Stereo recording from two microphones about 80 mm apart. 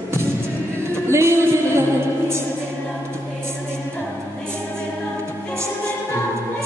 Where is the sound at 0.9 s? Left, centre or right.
Right.